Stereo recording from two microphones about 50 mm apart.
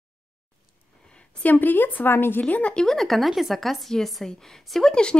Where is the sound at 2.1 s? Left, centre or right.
Left.